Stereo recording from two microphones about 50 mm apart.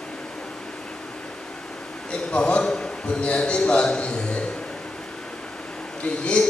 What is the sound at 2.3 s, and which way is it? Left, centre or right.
A man's voice, left.